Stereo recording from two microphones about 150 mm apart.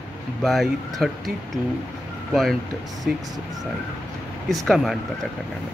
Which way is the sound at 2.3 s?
Centre (ahead or behind).